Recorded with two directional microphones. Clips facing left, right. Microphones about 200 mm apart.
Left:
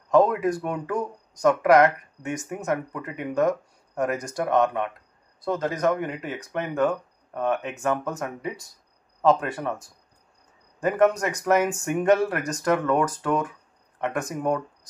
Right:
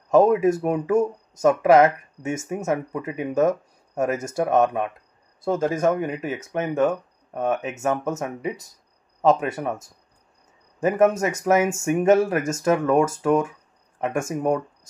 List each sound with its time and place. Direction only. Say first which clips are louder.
0.1 s speech: right 3 dB; 25° right (ahead or behind)
10.8 s speech: right 2 dB; 25° right (ahead or behind)